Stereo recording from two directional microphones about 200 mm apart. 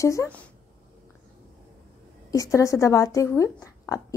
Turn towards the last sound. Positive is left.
turn(degrees=15)  # may be behind; listen again after turning